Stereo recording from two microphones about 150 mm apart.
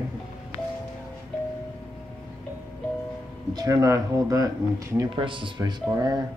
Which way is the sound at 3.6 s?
20° right (ahead or behind).